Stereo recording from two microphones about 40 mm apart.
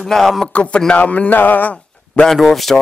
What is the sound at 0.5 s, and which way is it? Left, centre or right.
Speech, left.